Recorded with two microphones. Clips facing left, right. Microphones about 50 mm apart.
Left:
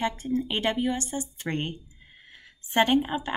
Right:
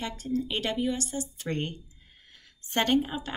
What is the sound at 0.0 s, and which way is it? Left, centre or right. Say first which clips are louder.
Speech: left 4 dB; left.